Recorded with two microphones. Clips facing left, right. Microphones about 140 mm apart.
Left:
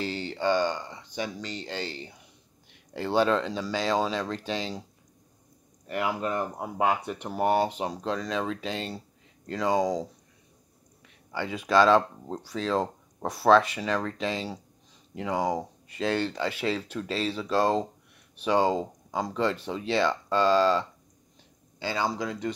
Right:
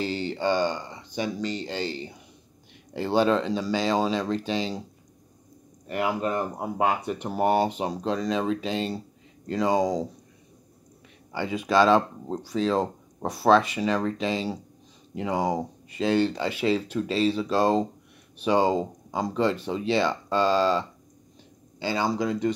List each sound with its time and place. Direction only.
0.1 s speech: 25° right (ahead or behind)
2.9 s speech: 20° right (ahead or behind)
6.6 s speech: 15° right (ahead or behind)
11.3 s speech: 10° right (ahead or behind); by 22.5 s 25° right (ahead or behind)